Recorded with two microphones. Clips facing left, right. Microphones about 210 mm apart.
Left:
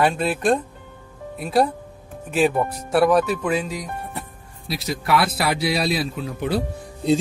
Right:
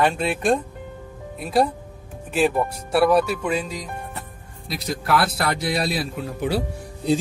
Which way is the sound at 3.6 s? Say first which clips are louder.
Left 2 dB; 10° left (ahead or behind).